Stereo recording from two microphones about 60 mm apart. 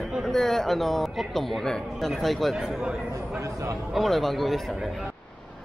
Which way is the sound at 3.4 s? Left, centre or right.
Right.